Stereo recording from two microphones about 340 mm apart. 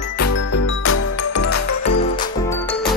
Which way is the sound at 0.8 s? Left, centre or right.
Left.